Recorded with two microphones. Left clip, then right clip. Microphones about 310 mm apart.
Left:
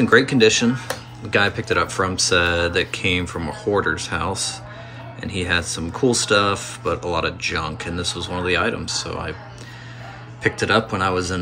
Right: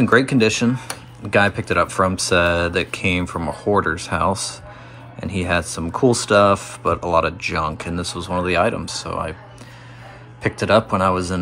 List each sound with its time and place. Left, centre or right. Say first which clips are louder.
0.0 s speech: left 1 dB; centre
10.4 s speech: right 2 dB; centre